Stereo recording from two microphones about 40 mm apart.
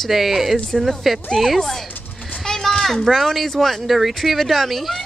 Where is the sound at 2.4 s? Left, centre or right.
Centre.